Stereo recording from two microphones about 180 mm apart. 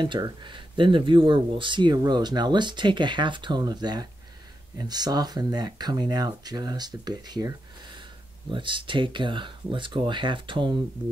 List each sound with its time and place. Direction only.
0.0 s speech: 25° right (ahead or behind)